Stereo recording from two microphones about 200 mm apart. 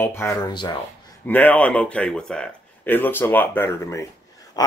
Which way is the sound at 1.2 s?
10° left (ahead or behind).